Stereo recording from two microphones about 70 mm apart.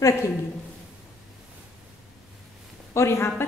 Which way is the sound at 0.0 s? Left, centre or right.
Left.